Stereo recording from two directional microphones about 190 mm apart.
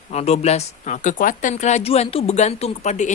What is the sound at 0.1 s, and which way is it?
Speech, 35° left (ahead or behind).